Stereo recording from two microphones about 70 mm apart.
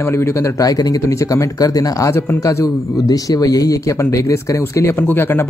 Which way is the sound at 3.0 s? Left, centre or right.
Left.